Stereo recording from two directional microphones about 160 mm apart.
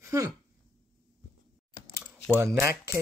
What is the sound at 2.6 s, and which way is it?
Speech, 15° right (ahead or behind).